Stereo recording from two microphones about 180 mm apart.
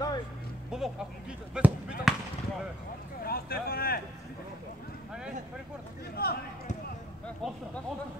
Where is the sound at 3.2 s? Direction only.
55° left (ahead or behind).